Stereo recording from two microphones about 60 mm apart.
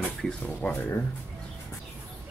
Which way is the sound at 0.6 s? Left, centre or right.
Left.